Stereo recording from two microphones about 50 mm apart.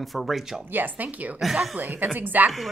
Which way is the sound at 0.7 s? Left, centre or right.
Right.